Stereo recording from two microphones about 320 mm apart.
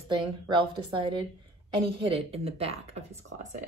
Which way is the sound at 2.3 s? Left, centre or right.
Centre.